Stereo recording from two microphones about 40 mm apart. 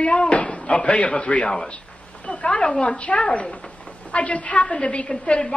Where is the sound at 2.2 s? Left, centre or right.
Left.